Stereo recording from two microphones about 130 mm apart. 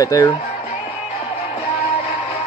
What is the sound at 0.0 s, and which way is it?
Speech, 30° left (ahead or behind).